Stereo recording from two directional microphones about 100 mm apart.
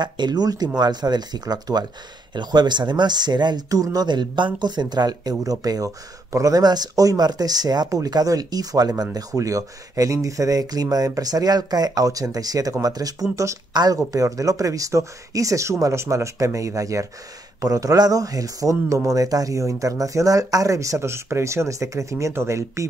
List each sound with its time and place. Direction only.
0.0 s speech: 45° right (ahead or behind); by 22.8 s 30° right (ahead or behind)